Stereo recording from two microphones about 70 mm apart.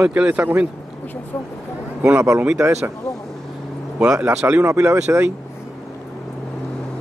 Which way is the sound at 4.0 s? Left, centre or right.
Centre.